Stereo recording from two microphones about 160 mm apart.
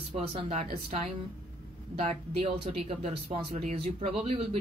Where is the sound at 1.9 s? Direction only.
40° right (ahead or behind).